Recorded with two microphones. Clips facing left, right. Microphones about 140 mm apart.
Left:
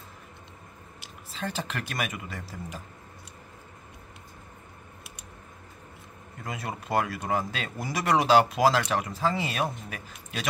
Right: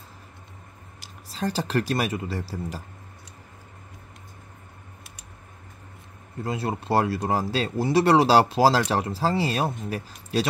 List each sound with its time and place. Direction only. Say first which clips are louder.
1.0 s speech: right 6 dB; 35° right (ahead or behind)
6.4 s speech: right 7 dB; 30° right (ahead or behind)